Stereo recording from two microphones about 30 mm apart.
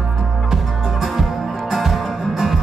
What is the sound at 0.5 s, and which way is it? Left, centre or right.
Music, centre.